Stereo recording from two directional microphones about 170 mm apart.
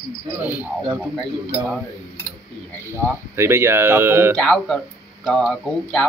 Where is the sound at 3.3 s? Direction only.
15° right (ahead or behind).